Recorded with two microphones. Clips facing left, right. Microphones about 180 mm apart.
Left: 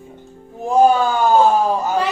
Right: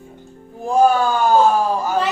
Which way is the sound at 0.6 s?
20° left (ahead or behind).